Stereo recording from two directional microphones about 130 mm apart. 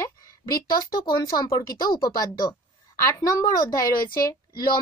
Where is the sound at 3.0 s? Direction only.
25° left (ahead or behind).